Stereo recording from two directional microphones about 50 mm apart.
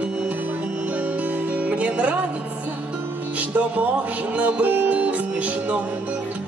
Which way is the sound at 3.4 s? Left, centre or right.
Right.